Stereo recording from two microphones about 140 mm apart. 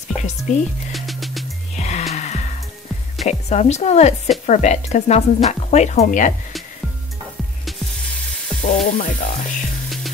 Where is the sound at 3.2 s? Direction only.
50° left (ahead or behind).